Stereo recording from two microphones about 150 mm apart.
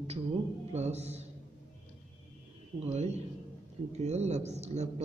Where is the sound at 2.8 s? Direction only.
50° right (ahead or behind).